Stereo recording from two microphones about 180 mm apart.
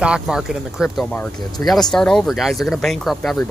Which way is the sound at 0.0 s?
5° right (ahead or behind).